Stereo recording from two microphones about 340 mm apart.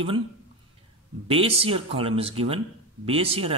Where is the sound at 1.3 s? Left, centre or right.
Centre.